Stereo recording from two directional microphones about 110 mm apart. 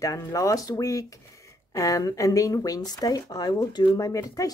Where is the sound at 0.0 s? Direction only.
30° left (ahead or behind).